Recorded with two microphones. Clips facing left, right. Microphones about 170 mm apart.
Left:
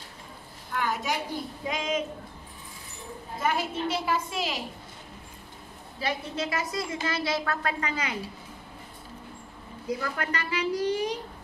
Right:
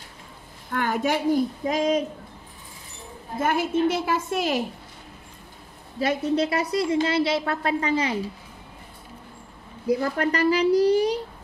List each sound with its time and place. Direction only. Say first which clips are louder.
0.7 s a woman's voice: right 5 dB; 55° right (ahead or behind)
1.6 s a child's voice: right 7 dB; 40° right (ahead or behind)
3.3 s a woman's voice: right 6 dB; 50° right (ahead or behind)
5.9 s a woman's voice: right 9 dB; 35° right (ahead or behind)
9.8 s a child's voice: right 8 dB; 35° right (ahead or behind)